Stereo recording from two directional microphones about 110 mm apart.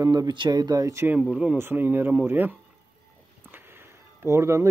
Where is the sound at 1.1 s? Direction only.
10° right (ahead or behind).